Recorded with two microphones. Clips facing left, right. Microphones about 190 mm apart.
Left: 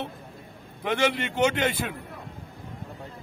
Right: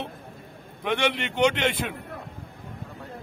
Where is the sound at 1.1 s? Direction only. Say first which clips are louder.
Right 1 dB; 70° right (ahead or behind).